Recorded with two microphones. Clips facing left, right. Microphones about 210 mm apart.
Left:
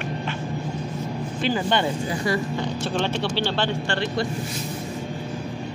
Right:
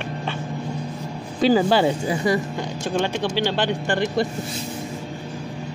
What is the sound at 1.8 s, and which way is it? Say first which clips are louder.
Speech: right 4 dB; 20° right (ahead or behind).